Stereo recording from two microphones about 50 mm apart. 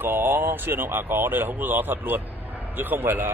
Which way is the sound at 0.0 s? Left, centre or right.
Right.